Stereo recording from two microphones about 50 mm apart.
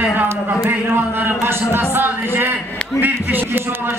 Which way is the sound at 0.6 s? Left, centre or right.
Right.